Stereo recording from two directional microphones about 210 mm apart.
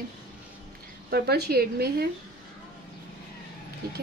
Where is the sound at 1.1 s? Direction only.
50° right (ahead or behind).